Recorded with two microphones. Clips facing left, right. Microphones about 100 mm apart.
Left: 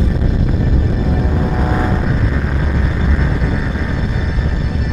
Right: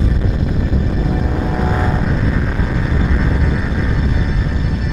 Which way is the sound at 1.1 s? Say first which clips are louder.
Left 1 dB; centre (ahead or behind).